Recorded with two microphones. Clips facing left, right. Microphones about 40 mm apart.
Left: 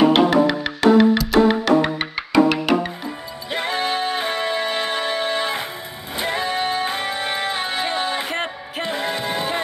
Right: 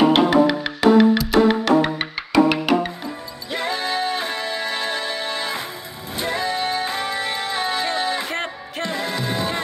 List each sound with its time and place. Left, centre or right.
0.1 s music: centre
3.4 s music: left
8.3 s music: centre
8.8 s music: left